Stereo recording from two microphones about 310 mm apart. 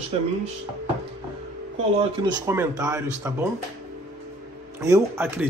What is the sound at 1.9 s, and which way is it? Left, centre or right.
Speech, centre.